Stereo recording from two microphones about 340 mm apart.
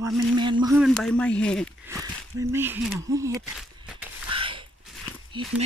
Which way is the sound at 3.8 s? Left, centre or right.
Centre.